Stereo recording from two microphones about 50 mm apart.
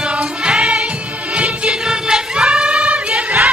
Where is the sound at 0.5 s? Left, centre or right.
Right.